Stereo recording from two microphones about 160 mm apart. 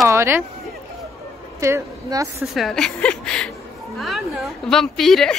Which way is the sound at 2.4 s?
Centre (ahead or behind).